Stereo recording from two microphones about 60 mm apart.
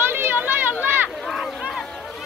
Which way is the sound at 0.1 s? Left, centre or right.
Right.